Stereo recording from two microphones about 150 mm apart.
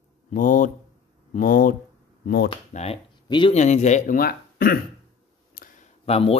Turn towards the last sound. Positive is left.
turn(degrees=40)  # may be behind; listen again after turning